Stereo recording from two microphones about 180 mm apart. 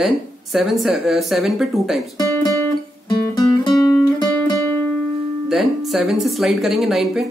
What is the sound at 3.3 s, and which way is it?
Guitar, 20° left (ahead or behind).